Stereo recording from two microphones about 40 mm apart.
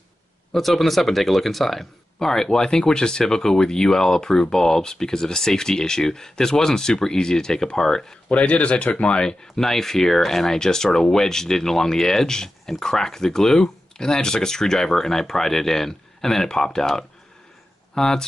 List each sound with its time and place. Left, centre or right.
0.5 s speech: centre
8.5 s speech: left
9.6 s speech: centre